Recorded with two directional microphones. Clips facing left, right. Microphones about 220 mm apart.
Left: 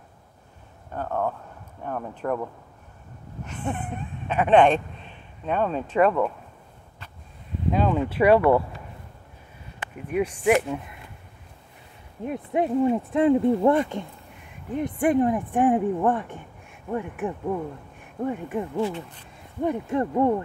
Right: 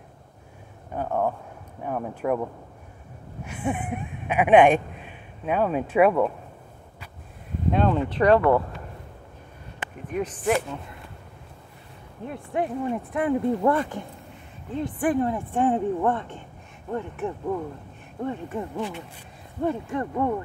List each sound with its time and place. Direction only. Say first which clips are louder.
0.9 s speech: right 2 dB; 10° right (ahead or behind)
3.4 s speech: right 3 dB; 10° right (ahead or behind)
7.7 s a woman's voice: even; 5° left (ahead or behind)
10.1 s a woman's voice: left 3 dB; 10° left (ahead or behind)
12.3 s a woman's voice: left 4 dB; 20° left (ahead or behind)
19.6 s a woman's voice: left 2 dB; 15° left (ahead or behind)